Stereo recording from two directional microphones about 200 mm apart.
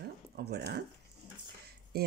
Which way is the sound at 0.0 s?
55° right (ahead or behind).